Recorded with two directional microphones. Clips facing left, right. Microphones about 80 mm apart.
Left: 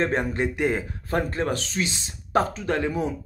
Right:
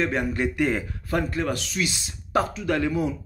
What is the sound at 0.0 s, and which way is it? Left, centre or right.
Speech, left.